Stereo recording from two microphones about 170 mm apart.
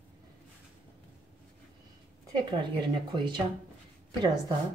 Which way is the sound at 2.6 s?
25° right (ahead or behind).